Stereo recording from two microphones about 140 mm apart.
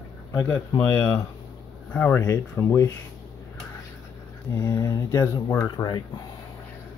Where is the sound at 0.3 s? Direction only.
25° left (ahead or behind).